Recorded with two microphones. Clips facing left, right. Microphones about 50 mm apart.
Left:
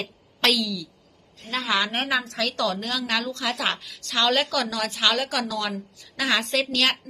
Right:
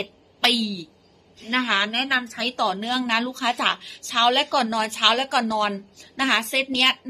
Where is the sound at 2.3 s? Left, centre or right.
Centre.